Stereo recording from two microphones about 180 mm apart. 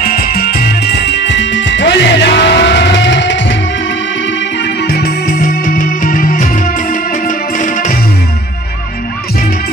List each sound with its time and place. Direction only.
0.0 s music: 50° left (ahead or behind); by 3.5 s 85° left
4.8 s music: 55° left (ahead or behind)